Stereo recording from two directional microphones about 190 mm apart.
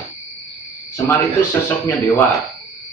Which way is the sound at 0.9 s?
15° left (ahead or behind).